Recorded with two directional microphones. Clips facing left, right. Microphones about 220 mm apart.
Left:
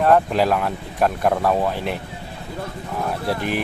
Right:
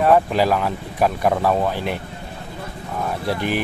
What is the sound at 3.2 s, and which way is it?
Speech, centre (ahead or behind).